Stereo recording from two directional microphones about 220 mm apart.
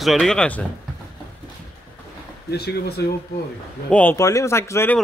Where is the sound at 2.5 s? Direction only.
45° left (ahead or behind).